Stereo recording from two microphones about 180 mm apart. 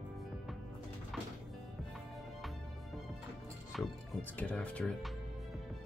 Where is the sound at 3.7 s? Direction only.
Centre (ahead or behind).